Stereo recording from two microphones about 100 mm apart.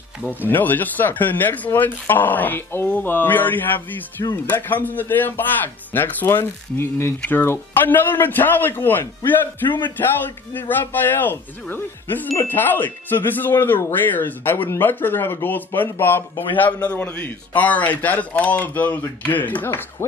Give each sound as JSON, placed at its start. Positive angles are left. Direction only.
{"t": 0.5, "sound": "a man's voice", "side_deg": 20}